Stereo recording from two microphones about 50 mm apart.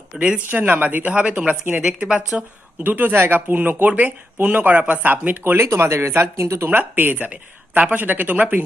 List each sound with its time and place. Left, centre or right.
0.1 s a woman's voice: right
0.5 s speech: right
1.8 s a woman's voice: centre
2.8 s speech: right
5.4 s speech: right
5.7 s speech: right
6.3 s speech: right
6.7 s speech: right